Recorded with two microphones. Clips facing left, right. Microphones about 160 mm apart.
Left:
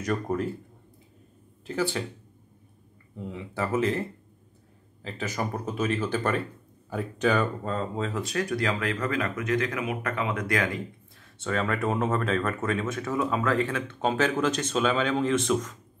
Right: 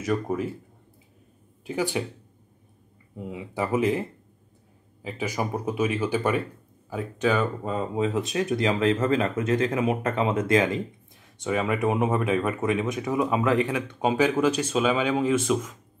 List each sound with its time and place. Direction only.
0.0 s speech: 5° right (ahead or behind)
1.7 s speech: 15° right (ahead or behind)
3.2 s speech: 10° right (ahead or behind)
5.0 s speech: 10° right (ahead or behind)